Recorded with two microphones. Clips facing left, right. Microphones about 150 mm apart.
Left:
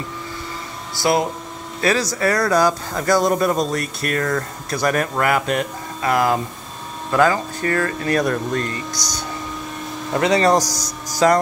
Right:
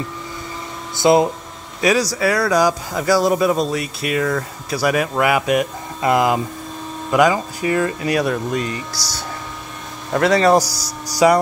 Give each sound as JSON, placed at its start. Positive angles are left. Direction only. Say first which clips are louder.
{"t": 1.0, "sound": "speech", "louder": "right 5 dB", "side_deg": -20}
{"t": 10.1, "sound": "speech", "louder": "right 2 dB", "side_deg": 0}